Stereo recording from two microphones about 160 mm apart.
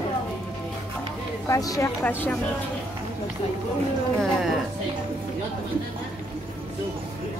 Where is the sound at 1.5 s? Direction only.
20° left (ahead or behind).